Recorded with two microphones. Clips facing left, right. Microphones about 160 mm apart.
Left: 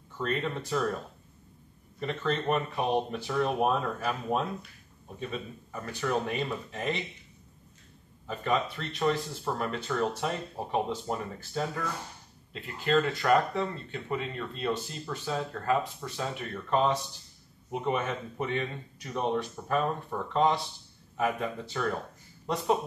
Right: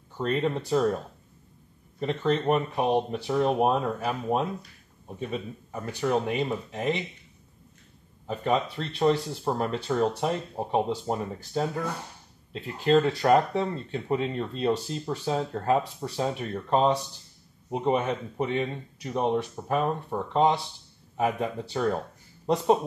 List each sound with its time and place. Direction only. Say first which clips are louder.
0.2 s speech: right 5 dB; 25° right (ahead or behind)
5.3 s speech: right 4 dB; 20° right (ahead or behind)
8.3 s speech: right 3 dB; 25° right (ahead or behind)
18.0 s speech: right 4 dB; 20° right (ahead or behind)